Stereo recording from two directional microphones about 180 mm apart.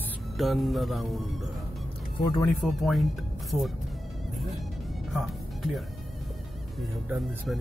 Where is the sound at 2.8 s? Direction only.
Centre (ahead or behind).